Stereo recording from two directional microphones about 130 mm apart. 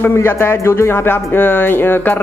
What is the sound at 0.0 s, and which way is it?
Speech, 15° left (ahead or behind).